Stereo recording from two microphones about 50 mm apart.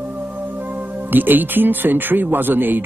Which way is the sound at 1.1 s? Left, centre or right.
Right.